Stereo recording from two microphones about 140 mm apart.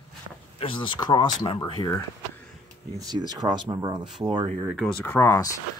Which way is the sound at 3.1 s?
30° right (ahead or behind).